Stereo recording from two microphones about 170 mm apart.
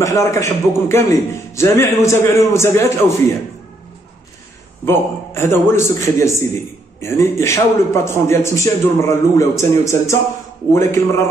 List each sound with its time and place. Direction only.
0.0 s a man's voice: 20° left (ahead or behind)
4.8 s a man's voice: 15° left (ahead or behind)